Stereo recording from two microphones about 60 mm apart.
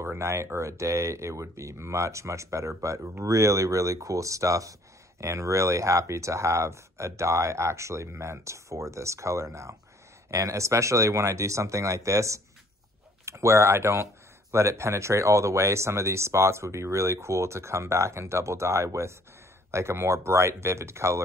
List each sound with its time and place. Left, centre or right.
0.0 s speech: right